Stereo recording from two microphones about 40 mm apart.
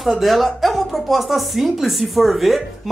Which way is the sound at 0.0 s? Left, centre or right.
Centre.